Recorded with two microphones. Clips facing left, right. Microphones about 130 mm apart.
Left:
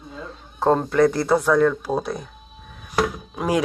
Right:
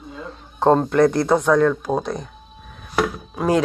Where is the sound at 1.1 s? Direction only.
5° left (ahead or behind).